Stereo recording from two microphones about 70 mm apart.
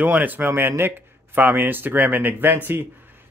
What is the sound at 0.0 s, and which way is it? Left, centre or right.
Speech, right.